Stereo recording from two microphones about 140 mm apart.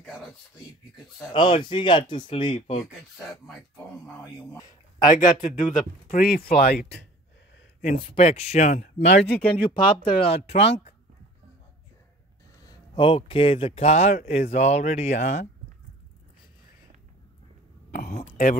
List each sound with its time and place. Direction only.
0.0 s a sound: 5° left (ahead or behind)
1.3 s speech: 35° left (ahead or behind)
5.0 s a man's voice: 65° left (ahead or behind); by 6.9 s 90° left
8.0 s speech: 45° left (ahead or behind)
9.6 s speech: 35° left (ahead or behind)
12.6 s speech: 35° left (ahead or behind); by 15.4 s 55° left (ahead or behind)
18.2 s speech: 80° left